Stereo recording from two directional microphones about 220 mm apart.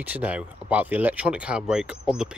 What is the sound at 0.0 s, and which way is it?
Speech, 5° right (ahead or behind).